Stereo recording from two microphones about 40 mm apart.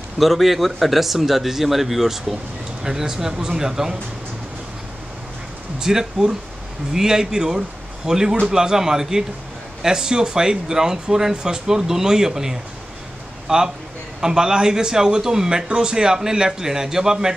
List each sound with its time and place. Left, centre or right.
0.2 s speech: centre
5.8 s speech: centre